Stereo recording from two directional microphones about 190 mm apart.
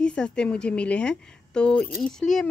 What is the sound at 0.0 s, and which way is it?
A woman's voice, 5° left (ahead or behind).